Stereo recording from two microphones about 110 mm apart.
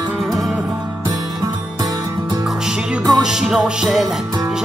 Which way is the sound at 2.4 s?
5° right (ahead or behind).